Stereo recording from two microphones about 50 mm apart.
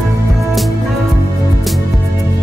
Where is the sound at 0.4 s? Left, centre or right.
Centre.